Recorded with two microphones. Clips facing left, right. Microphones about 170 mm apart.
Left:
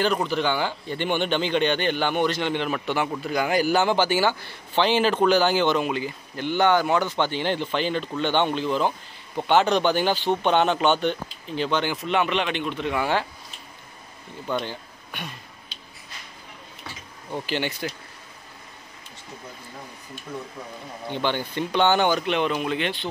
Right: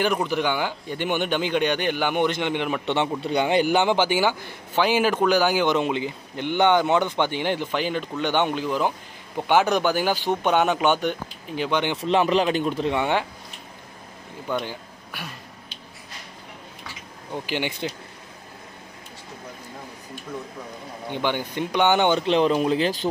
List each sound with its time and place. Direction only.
0.0 s a man's voice: 15° right (ahead or behind)
5.8 s a man's voice: 20° right (ahead or behind)
12.0 s speech: 30° right (ahead or behind)
14.5 s speech: 10° right (ahead or behind)
17.3 s a man's voice: 15° right (ahead or behind)
21.1 s speech: 15° right (ahead or behind); by 23.0 s 35° right (ahead or behind)